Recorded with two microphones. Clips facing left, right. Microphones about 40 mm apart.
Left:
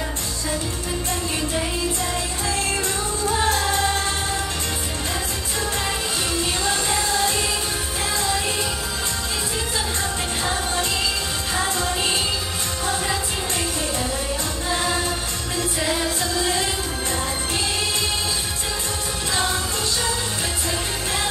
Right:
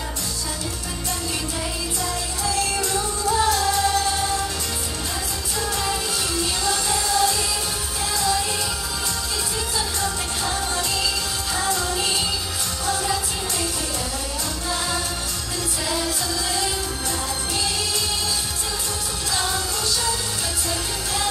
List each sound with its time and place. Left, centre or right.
2.4 s music: left
5.9 s music: left
10.4 s music: left
15.8 s music: left